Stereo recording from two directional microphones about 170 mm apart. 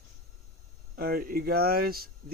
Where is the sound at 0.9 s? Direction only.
60° right (ahead or behind).